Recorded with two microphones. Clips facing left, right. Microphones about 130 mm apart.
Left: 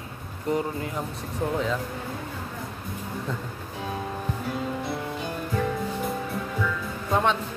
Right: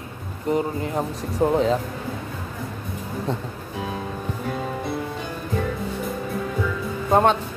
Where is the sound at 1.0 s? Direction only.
35° right (ahead or behind).